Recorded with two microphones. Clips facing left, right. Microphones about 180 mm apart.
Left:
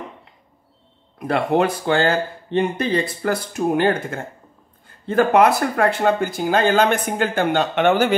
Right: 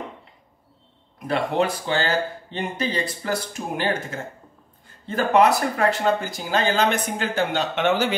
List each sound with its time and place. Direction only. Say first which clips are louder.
1.2 s speech: left 4 dB; 55° left (ahead or behind)